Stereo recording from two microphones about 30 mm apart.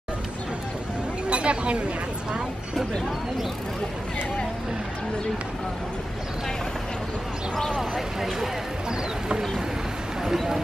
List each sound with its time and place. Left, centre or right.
1.3 s a sound: right
7.5 s speech: centre
7.9 s speech: centre
10.2 s speech: centre